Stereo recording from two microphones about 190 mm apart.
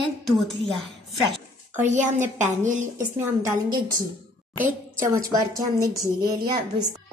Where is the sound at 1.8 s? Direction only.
40° right (ahead or behind).